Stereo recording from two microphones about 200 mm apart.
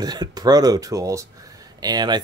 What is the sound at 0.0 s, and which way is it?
Speech, 20° right (ahead or behind).